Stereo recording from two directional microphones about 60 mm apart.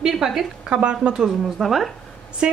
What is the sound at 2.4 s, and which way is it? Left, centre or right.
Speech, centre.